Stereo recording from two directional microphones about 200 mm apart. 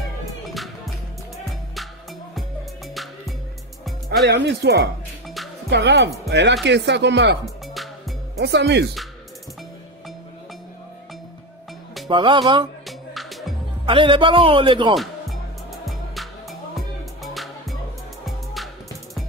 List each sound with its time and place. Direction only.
2.9 s music: centre (ahead or behind)
4.2 s speech: 55° right (ahead or behind)
7.6 s music: centre (ahead or behind)
8.4 s speech: 60° right (ahead or behind)
12.1 s speech: 25° right (ahead or behind)
12.8 s music: centre (ahead or behind)
13.8 s speech: 25° right (ahead or behind)
15.0 s music: centre (ahead or behind)